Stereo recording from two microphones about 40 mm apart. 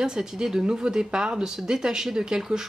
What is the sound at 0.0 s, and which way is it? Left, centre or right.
Speech, centre.